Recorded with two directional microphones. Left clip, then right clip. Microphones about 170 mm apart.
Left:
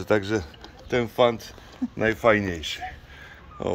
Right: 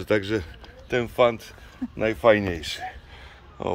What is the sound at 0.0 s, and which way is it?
A man's voice, 5° right (ahead or behind).